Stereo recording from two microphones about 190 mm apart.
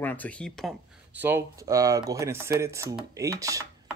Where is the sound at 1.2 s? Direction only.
10° right (ahead or behind).